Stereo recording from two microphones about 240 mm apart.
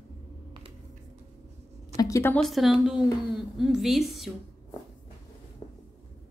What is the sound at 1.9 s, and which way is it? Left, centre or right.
A woman's voice, centre.